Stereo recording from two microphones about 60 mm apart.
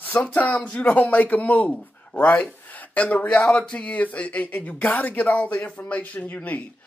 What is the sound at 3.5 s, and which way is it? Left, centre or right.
Speech, centre.